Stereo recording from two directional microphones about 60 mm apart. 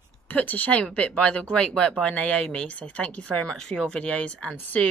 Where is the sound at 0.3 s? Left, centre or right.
Left.